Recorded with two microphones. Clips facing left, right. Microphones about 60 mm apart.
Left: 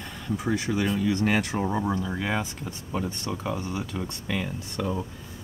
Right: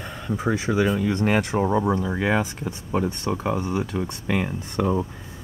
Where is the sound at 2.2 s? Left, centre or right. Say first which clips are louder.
Right 6 dB; right.